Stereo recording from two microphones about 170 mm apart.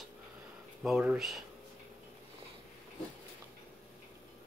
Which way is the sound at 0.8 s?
5° right (ahead or behind).